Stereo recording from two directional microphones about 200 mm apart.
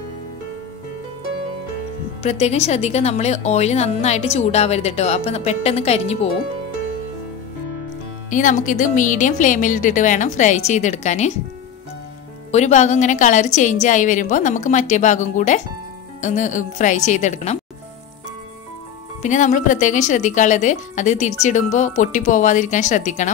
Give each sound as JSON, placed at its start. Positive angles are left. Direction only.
{"t": 2.2, "sound": "a woman's voice", "side_deg": 30}
{"t": 8.3, "sound": "a woman's voice", "side_deg": 40}
{"t": 12.4, "sound": "a woman's voice", "side_deg": 35}
{"t": 19.2, "sound": "a woman's voice", "side_deg": 40}